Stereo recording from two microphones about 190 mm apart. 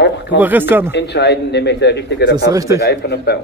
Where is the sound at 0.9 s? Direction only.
65° left (ahead or behind).